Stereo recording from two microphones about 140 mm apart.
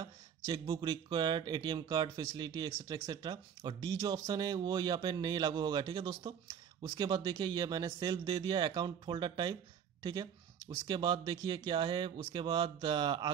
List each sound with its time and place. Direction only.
0.0 s speech: 30° right (ahead or behind)